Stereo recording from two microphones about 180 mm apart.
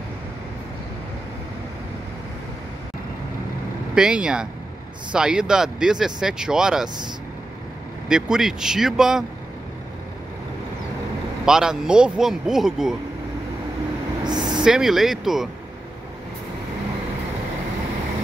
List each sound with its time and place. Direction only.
3.9 s speech: 5° right (ahead or behind)
8.1 s speech: 5° right (ahead or behind)
11.4 s speech: 5° right (ahead or behind)
14.2 s vehicle: 25° right (ahead or behind)
14.6 s speech: 5° right (ahead or behind)